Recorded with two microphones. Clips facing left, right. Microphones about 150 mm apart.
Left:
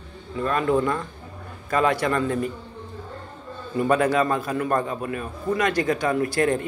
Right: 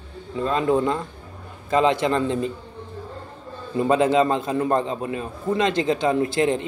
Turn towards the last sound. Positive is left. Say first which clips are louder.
# right 1 dB
turn(degrees=-20)  # may be behind; listen again after turning